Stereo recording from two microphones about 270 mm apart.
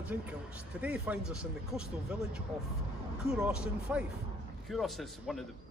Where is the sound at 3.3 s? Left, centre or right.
Centre.